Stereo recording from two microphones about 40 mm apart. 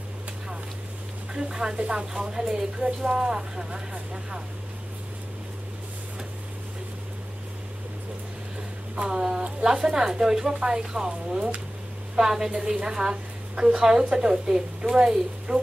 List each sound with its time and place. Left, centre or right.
1.3 s a woman's voice: centre
9.1 s a woman's voice: centre
12.2 s a woman's voice: centre